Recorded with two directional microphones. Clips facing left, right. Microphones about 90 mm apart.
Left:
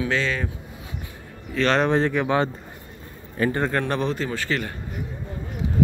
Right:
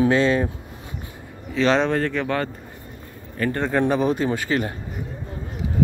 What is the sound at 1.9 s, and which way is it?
Speech, 15° left (ahead or behind).